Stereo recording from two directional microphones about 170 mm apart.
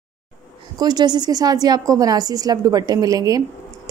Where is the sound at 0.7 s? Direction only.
25° right (ahead or behind).